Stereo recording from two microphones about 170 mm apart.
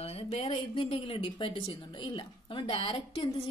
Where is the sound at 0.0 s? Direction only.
40° left (ahead or behind).